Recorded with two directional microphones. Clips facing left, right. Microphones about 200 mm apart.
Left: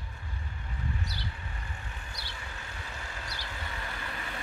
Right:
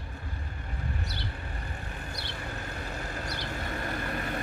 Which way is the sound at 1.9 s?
55° right (ahead or behind).